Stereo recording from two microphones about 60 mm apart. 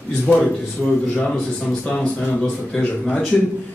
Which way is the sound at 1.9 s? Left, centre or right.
Centre.